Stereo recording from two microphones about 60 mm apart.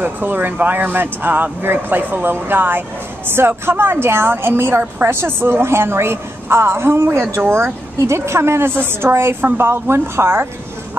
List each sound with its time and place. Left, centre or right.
0.0 s a woman's voice: right